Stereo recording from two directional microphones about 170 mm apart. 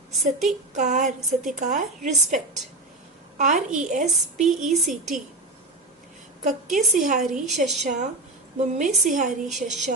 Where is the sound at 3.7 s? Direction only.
50° right (ahead or behind).